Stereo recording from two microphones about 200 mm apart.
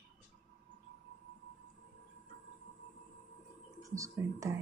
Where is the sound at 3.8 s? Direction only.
15° right (ahead or behind).